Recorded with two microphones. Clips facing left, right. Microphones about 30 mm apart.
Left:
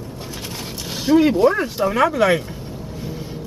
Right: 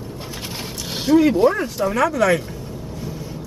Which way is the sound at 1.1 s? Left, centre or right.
Centre.